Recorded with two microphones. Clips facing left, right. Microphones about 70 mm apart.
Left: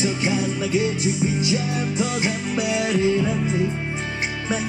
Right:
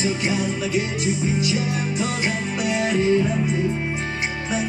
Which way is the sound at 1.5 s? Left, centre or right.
Right.